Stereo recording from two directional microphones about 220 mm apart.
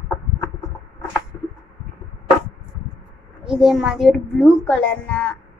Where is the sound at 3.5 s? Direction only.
Centre (ahead or behind).